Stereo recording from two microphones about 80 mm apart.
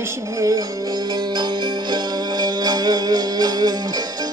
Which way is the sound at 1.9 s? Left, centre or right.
Right.